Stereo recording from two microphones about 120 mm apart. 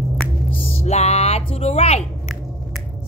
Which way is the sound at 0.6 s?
65° left (ahead or behind).